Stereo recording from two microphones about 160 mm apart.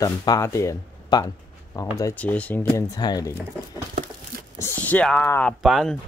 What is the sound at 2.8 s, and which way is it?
Speech, 25° left (ahead or behind).